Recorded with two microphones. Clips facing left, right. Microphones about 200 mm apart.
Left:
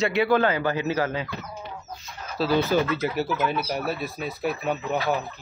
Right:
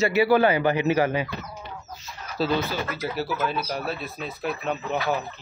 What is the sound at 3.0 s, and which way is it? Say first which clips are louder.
Speech: left 2 dB; 15° left (ahead or behind).